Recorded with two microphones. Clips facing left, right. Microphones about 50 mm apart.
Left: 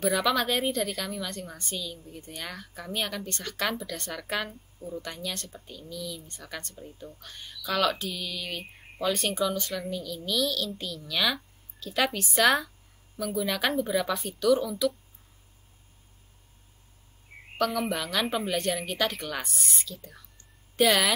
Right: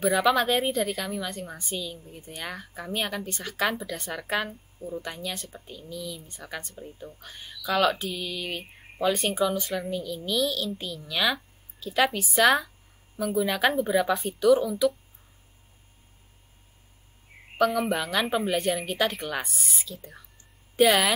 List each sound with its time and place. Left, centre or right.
0.0 s a woman's voice: centre
17.6 s a woman's voice: centre